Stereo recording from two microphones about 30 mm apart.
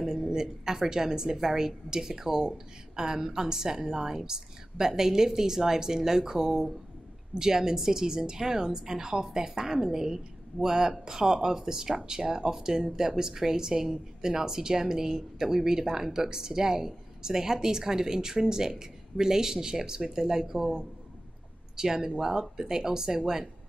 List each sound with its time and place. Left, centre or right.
0.0 s a woman's voice: centre
21.7 s a woman's voice: centre